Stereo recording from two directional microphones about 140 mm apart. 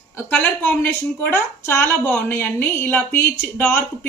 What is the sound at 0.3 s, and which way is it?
A woman's voice, 10° left (ahead or behind).